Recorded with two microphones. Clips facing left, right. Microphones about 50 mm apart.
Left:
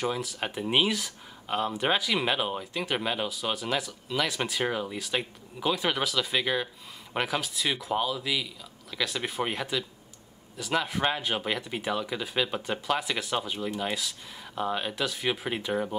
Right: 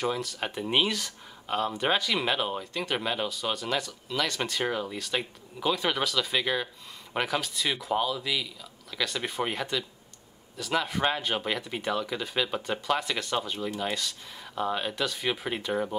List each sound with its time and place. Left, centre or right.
0.0 s speech: centre